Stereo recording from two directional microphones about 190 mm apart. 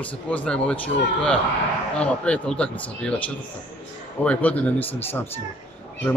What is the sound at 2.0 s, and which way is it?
A man's voice, 5° left (ahead or behind).